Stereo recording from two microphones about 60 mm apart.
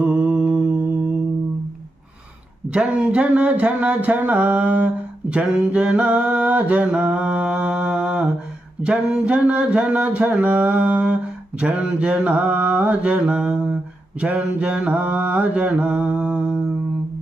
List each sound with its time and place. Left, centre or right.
0.0 s mantra: right
2.7 s a sound: centre
14.2 s mantra: right